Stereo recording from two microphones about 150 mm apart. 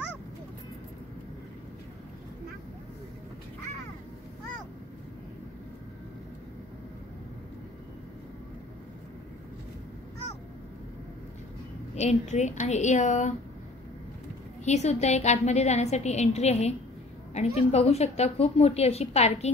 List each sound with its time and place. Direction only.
11.9 s a woman's voice: 50° left (ahead or behind)
14.6 s a woman's voice: 50° left (ahead or behind)